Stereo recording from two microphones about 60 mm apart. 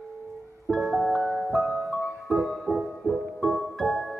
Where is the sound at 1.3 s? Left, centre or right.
Centre.